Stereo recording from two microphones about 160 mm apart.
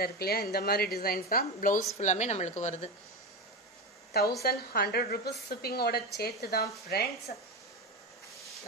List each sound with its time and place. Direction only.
0.0 s a woman's voice: 75° left (ahead or behind); by 2.9 s 45° left (ahead or behind)
4.4 s a woman's voice: 75° left (ahead or behind)
7.3 s speech: 50° left (ahead or behind)